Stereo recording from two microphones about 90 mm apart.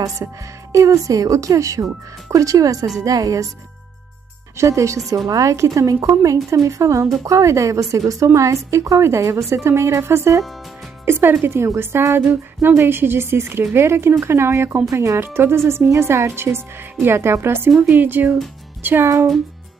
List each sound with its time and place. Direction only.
0.2 s a woman's voice: 35° right (ahead or behind)
4.6 s a woman's voice: 35° right (ahead or behind)
17.6 s speech: 15° right (ahead or behind)